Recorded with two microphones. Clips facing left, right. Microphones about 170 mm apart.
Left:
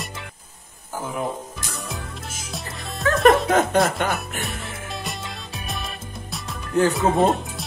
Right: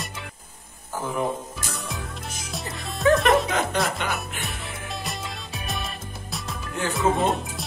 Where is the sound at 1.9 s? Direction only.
Centre (ahead or behind).